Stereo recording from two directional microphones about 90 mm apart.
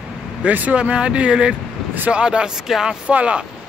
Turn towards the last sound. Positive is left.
turn(degrees=-10)  # may be behind; listen again after turning